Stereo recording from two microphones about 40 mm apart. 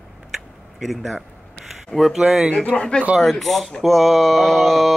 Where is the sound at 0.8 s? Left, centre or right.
Centre.